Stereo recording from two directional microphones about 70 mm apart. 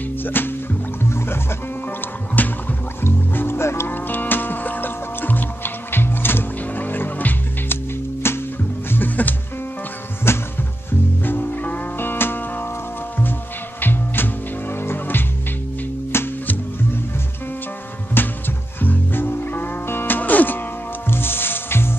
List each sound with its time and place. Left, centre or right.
0.2 s music: left
2.4 s music: left
11.2 s music: left
13.7 s music: left
18.2 s music: left